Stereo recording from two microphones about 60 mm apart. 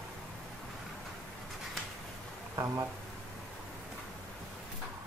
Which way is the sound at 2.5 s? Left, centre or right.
Right.